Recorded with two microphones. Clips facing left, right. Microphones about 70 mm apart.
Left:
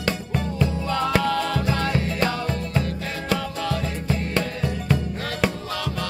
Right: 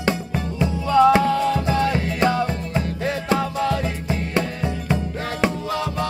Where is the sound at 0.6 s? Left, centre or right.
Right.